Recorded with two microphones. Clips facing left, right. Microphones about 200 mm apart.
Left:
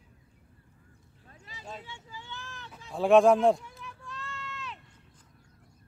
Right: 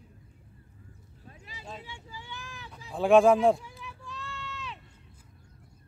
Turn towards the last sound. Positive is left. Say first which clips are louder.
# right 1 dB
turn(degrees=0)  # may be behind; listen again after turning